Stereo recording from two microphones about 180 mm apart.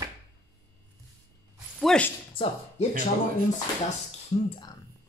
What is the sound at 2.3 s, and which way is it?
Speech, 30° left (ahead or behind).